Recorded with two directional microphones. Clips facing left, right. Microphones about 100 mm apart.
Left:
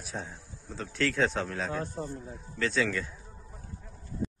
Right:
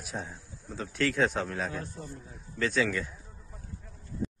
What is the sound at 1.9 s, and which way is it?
Speech, 40° left (ahead or behind).